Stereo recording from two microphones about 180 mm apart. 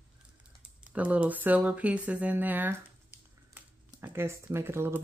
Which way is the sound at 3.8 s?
15° right (ahead or behind).